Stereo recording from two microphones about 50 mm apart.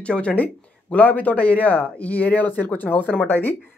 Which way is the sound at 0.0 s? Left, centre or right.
Left.